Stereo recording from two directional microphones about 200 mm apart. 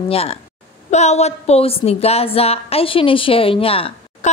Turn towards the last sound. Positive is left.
turn(degrees=30)  # may be behind; listen again after turning